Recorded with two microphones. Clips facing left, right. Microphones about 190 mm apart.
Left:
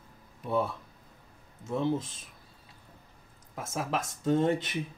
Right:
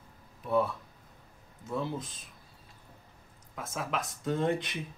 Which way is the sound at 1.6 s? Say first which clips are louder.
Left 5 dB; 25° left (ahead or behind).